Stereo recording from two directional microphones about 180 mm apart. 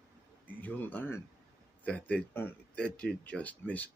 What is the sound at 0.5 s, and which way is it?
Speech, 10° left (ahead or behind).